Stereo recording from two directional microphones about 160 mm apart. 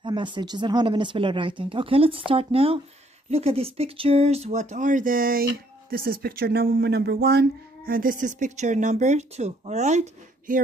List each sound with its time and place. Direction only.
0.0 s speech: 30° right (ahead or behind); by 10.6 s 50° right (ahead or behind)